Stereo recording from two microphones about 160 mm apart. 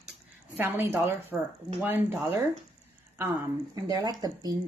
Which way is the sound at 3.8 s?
25° right (ahead or behind).